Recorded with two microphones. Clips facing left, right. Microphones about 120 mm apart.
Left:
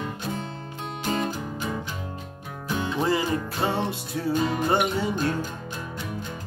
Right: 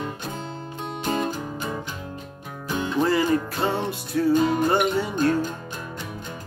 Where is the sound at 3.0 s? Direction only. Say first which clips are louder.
Right 4 dB; 20° left (ahead or behind).